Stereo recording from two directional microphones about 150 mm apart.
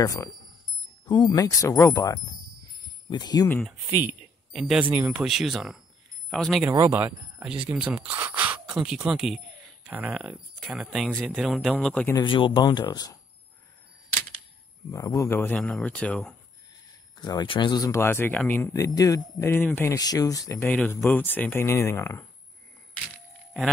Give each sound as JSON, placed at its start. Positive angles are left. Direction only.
{"t": 0.0, "sound": "speech", "side_deg": 20}
{"t": 3.9, "sound": "speech", "side_deg": -10}
{"t": 6.7, "sound": "speech", "side_deg": -15}
{"t": 12.2, "sound": "speech", "side_deg": 35}
{"t": 14.9, "sound": "speech", "side_deg": 20}
{"t": 17.2, "sound": "speech", "side_deg": 30}
{"t": 20.6, "sound": "speech", "side_deg": 10}